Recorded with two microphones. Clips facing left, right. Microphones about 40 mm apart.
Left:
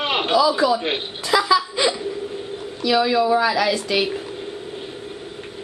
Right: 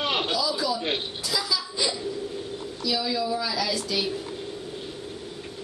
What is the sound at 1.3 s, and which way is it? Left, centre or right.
Laughter, left.